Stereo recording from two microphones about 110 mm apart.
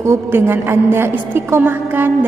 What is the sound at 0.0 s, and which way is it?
A woman's voice, 25° right (ahead or behind).